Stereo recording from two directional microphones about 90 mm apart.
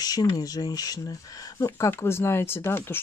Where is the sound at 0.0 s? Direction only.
45° left (ahead or behind).